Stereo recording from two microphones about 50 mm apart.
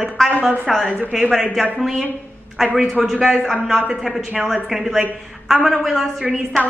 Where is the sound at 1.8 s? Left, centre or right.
Centre.